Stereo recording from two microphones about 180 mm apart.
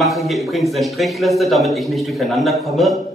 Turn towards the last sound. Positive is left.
turn(degrees=0)  # may be behind; listen again after turning